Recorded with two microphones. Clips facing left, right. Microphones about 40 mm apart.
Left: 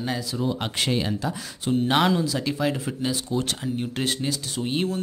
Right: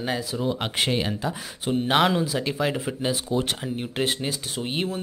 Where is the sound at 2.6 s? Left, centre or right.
Centre.